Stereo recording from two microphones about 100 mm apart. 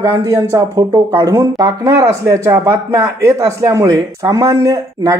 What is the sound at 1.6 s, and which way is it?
Speech, 40° right (ahead or behind).